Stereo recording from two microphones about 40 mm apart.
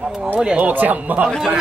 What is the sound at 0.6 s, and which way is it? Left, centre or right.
Speech, right.